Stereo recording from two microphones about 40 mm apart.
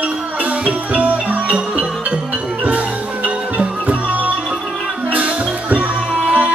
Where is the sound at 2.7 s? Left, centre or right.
Right.